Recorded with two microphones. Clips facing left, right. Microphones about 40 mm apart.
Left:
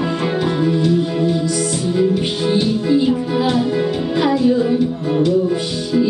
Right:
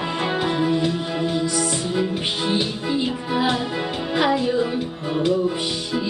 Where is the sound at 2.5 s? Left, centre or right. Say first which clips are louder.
Left 9 dB; centre.